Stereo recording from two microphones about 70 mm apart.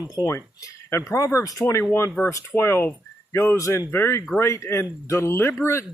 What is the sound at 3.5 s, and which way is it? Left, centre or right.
Speech, left.